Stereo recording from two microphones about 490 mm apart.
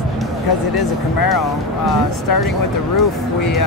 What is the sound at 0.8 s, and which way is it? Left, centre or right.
Speech, left.